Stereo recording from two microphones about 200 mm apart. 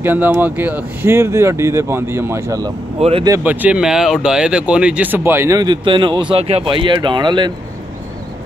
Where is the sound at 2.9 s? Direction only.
30° right (ahead or behind).